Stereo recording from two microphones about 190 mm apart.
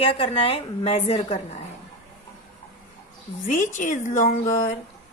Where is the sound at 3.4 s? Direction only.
45° left (ahead or behind).